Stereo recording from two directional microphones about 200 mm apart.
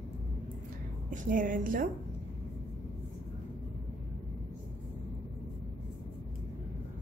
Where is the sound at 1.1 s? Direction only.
40° right (ahead or behind).